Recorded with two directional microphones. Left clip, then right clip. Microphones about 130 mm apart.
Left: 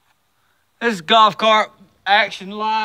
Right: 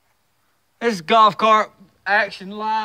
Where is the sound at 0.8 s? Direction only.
25° right (ahead or behind).